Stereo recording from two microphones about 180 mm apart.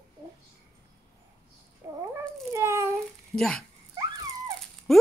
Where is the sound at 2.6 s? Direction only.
15° right (ahead or behind).